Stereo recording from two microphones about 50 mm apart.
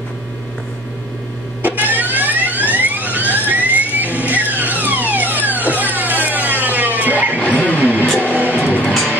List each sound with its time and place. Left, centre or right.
1.6 s power windows: right
2.7 s vehicle: right
7.4 s music: right